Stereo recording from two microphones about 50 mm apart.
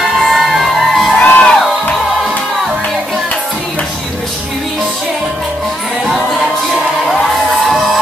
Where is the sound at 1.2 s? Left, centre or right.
Left.